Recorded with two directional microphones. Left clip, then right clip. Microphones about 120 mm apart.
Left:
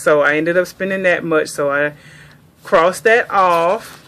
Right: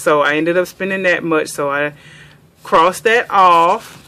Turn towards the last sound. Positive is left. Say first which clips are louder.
# right 3 dB
turn(degrees=-5)  # may be behind; listen again after turning